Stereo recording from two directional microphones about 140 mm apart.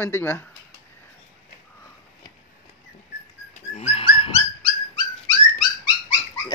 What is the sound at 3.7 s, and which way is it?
Dog, 45° left (ahead or behind).